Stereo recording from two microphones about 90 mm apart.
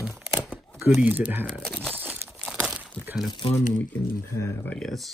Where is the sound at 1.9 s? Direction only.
20° right (ahead or behind).